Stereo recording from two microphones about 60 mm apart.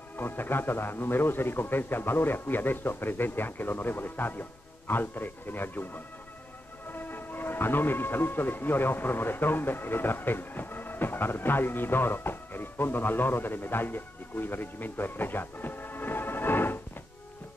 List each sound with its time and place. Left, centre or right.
0.2 s a man's voice: left